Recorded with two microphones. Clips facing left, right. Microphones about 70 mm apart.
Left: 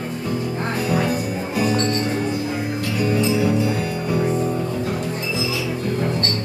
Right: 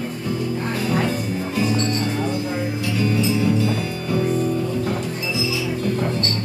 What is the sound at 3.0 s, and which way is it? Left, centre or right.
Music, left.